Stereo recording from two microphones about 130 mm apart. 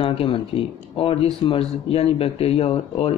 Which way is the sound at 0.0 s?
45° left (ahead or behind).